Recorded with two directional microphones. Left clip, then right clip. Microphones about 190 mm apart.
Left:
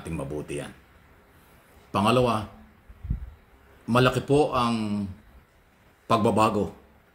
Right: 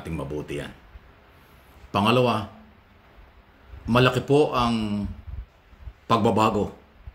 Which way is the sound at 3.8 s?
10° right (ahead or behind).